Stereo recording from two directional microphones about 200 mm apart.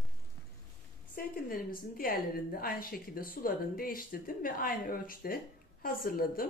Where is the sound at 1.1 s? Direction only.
45° left (ahead or behind).